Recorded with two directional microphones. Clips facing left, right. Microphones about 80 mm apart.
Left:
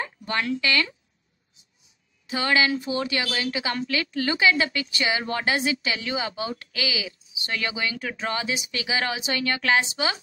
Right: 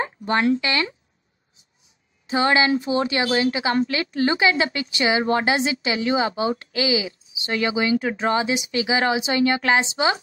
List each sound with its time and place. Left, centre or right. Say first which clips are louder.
0.0 s speech: right 7 dB; right
2.2 s a woman's voice: right 4 dB; right